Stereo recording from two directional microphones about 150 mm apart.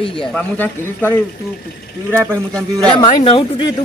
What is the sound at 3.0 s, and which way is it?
Speech, 35° left (ahead or behind).